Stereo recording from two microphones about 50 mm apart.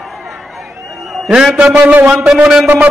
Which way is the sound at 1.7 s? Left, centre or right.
Right.